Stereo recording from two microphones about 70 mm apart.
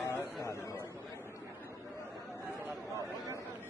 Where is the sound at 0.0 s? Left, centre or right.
Left.